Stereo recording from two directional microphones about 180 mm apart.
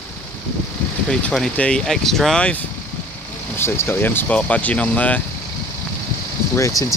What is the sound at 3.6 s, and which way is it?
Speech, 15° left (ahead or behind).